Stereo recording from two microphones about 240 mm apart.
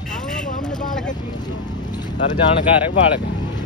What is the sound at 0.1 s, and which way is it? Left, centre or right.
Vehicle, centre.